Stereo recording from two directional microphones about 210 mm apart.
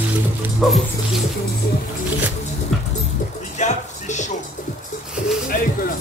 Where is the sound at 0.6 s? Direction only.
Centre (ahead or behind).